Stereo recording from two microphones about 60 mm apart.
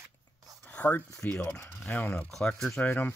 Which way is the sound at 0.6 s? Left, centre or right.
Left.